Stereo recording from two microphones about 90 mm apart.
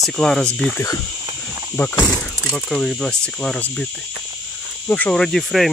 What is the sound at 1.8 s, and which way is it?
Speech, 15° left (ahead or behind).